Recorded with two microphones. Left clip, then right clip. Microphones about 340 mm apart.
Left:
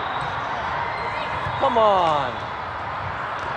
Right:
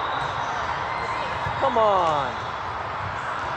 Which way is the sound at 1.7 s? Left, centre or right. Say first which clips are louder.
Left 2 dB; left.